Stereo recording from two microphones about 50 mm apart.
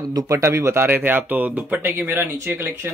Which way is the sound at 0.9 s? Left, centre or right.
Right.